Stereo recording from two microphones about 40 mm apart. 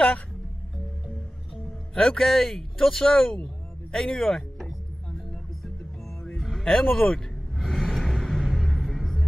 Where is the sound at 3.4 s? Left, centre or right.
Centre.